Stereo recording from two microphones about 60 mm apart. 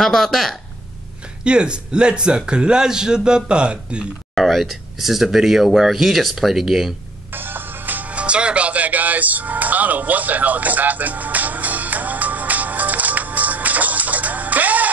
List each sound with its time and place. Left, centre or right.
0.0 s speech: centre
1.4 s a man's voice: centre
4.4 s speech: centre
7.3 s music: right